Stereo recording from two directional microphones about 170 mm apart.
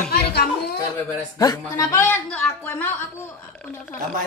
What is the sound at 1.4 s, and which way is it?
A woman's voice, 20° left (ahead or behind).